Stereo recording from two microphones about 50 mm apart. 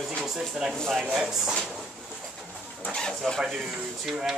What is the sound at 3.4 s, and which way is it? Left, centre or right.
Speech, centre.